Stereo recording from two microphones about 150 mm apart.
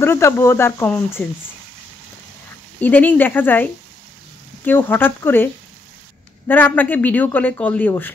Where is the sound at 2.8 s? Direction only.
10° left (ahead or behind).